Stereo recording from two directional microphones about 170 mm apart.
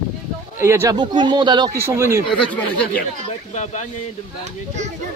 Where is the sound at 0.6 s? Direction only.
15° right (ahead or behind).